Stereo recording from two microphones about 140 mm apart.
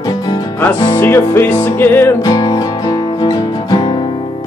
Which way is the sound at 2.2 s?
25° left (ahead or behind).